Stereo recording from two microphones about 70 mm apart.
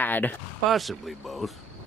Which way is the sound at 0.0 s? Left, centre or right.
Left.